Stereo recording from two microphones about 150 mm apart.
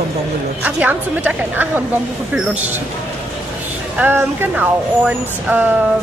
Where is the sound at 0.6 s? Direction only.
10° right (ahead or behind).